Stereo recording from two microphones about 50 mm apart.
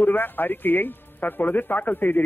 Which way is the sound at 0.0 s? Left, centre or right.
Left.